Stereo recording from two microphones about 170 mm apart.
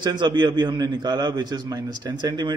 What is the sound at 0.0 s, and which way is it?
A man's voice, 25° right (ahead or behind).